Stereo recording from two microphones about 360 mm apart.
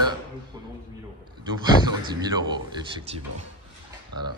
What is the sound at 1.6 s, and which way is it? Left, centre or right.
Speech, centre.